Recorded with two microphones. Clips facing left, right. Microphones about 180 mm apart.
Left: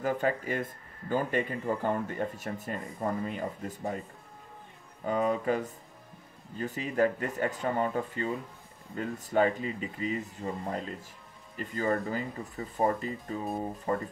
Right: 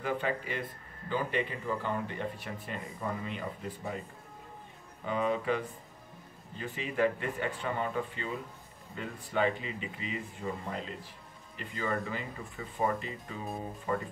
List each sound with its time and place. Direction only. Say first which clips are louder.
0.0 s speech: left 4 dB; 45° left (ahead or behind)
5.0 s speech: left 3 dB; 40° left (ahead or behind)